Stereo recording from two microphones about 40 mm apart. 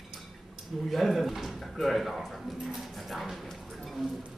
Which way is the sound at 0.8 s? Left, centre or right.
Centre.